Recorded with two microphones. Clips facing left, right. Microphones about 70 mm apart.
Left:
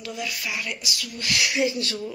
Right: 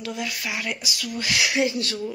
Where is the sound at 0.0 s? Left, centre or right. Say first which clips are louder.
Right 2 dB; right.